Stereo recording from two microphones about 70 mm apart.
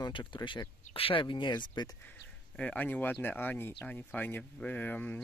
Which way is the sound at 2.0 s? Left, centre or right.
Left.